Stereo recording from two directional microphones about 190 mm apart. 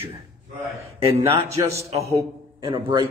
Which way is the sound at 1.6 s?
15° right (ahead or behind).